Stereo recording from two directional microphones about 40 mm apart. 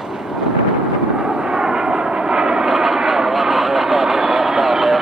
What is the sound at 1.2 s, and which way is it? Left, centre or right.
Vehicle, right.